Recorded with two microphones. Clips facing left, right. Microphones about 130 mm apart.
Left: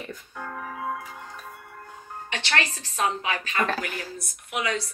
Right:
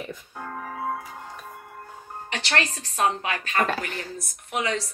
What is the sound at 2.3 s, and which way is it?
A woman's voice, 45° right (ahead or behind).